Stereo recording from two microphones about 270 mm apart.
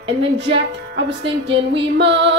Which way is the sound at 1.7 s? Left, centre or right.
Right.